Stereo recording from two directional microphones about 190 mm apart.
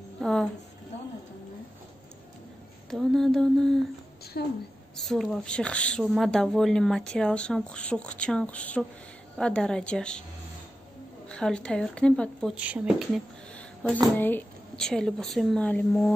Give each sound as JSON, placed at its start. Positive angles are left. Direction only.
{"t": 0.2, "sound": "a sound", "side_deg": 5}
{"t": 2.9, "sound": "mantra", "side_deg": 0}
{"t": 4.4, "sound": "a sound", "side_deg": 55}
{"t": 4.9, "sound": "speech", "side_deg": 0}
{"t": 11.2, "sound": "speech", "side_deg": 5}
{"t": 12.5, "sound": "speech", "side_deg": -5}